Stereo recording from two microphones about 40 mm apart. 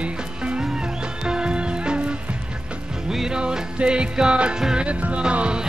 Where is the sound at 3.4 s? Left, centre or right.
Right.